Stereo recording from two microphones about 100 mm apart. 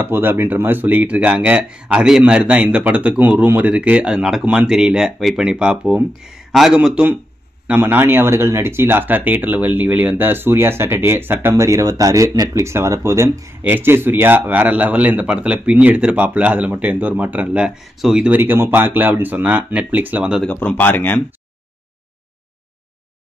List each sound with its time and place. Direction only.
0.0 s speech: 20° right (ahead or behind)
7.6 s speech: 20° right (ahead or behind)
18.4 s speech: 20° right (ahead or behind)
20.4 s speech: 15° left (ahead or behind)